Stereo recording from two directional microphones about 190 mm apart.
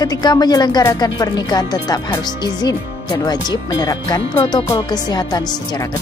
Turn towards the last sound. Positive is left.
turn(degrees=20)  # may be behind; listen again after turning